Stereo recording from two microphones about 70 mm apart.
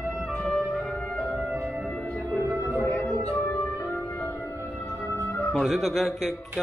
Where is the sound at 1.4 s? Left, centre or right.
Right.